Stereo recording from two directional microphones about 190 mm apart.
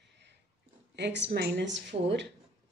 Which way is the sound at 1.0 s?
65° right (ahead or behind).